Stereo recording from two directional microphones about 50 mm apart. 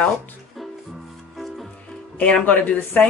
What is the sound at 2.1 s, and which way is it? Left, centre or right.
Speech, left.